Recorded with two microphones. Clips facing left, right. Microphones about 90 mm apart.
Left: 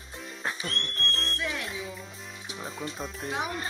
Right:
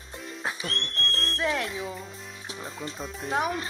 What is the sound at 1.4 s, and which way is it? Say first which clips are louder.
Music: right 9 dB; 50° right (ahead or behind).